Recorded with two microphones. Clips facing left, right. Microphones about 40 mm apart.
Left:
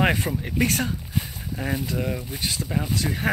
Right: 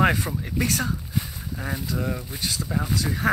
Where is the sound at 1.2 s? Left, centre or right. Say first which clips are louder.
Left 2 dB; left.